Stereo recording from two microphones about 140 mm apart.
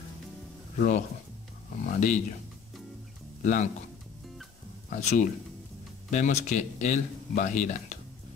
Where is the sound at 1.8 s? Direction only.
60° left (ahead or behind).